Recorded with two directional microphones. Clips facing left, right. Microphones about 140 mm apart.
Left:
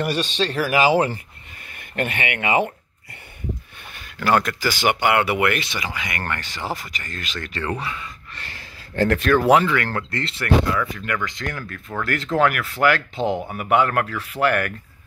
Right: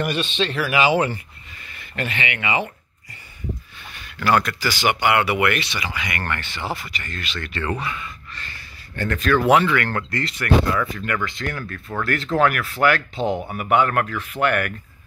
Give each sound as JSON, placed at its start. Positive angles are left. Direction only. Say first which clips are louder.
{"t": 0.0, "sound": "speech", "louder": "even", "side_deg": 40}
{"t": 1.7, "sound": "speech", "louder": "left 3 dB", "side_deg": 50}
{"t": 4.0, "sound": "speech", "louder": "even", "side_deg": 40}
{"t": 8.9, "sound": "speech", "louder": "left 5 dB", "side_deg": 80}
{"t": 9.3, "sound": "speech", "louder": "right 1 dB", "side_deg": 35}
{"t": 12.6, "sound": "speech", "louder": "even", "side_deg": -25}
{"t": 13.6, "sound": "speech", "louder": "even", "side_deg": 25}